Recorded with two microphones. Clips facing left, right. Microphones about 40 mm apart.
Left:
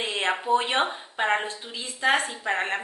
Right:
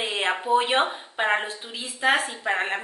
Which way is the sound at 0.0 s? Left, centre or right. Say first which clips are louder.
Right 1 dB; centre.